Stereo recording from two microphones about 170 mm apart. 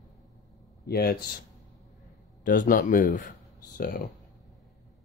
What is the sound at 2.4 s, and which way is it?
Speech, 55° left (ahead or behind).